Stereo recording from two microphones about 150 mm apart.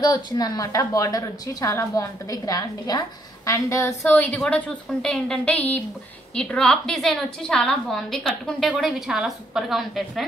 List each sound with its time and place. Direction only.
0.0 s a woman's voice: 25° left (ahead or behind); by 10.2 s centre (ahead or behind)